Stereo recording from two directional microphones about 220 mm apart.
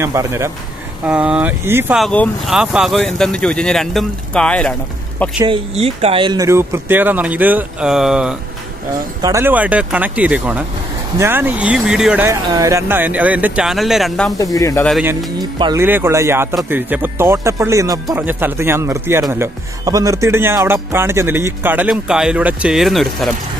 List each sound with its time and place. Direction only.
0.0 s speech: 15° right (ahead or behind); by 4.7 s 5° left (ahead or behind)
5.4 s speech: 25° right (ahead or behind); by 14.3 s centre (ahead or behind)
14.4 s speech: 15° left (ahead or behind)
15.6 s speech: 10° right (ahead or behind)